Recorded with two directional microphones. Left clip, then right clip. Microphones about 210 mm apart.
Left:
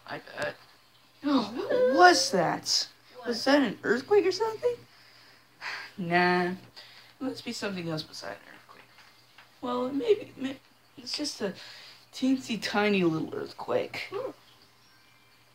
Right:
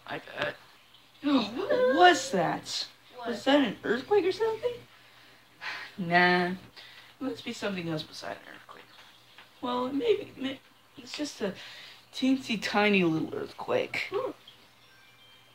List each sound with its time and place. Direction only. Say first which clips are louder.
0.0 s speech: right 1 dB; 5° left (ahead or behind)
1.2 s whimper: even; 15° left (ahead or behind)
2.3 s speech: left 2 dB; 30° left (ahead or behind)
2.8 s a sound: left 1 dB; 10° left (ahead or behind)
3.4 s speech: left 1 dB; 30° left (ahead or behind)
5.6 s a sound: even; 25° left (ahead or behind)
6.0 s a sound: right 1 dB; 15° left (ahead or behind)
7.3 s speech: right 1 dB; 25° left (ahead or behind)
8.1 s speech: right 1 dB; 15° left (ahead or behind)
9.6 s speech: even; 10° left (ahead or behind)
12.1 s speech: right 1 dB; 10° left (ahead or behind)